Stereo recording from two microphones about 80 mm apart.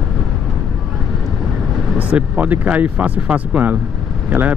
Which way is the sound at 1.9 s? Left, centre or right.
Centre.